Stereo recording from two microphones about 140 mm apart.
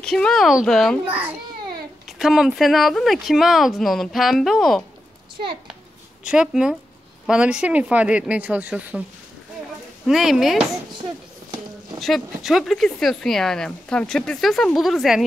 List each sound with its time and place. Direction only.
0.0 s speech: 5° left (ahead or behind)
2.0 s speech: centre (ahead or behind)
6.2 s a woman's voice: 5° right (ahead or behind)
10.0 s speech: centre (ahead or behind)
12.0 s speech: centre (ahead or behind)